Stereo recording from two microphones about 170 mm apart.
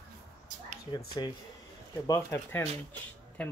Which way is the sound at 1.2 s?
30° left (ahead or behind).